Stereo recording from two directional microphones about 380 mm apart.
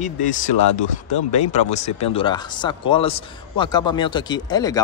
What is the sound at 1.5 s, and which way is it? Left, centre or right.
Speech, centre.